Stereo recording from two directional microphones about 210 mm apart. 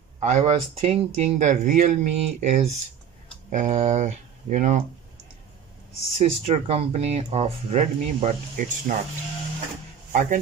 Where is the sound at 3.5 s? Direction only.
35° right (ahead or behind).